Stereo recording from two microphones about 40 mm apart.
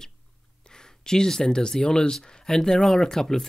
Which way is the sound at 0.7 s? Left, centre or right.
Centre.